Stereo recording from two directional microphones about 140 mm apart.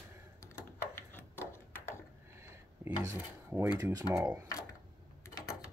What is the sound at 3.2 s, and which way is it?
Filing, 15° right (ahead or behind).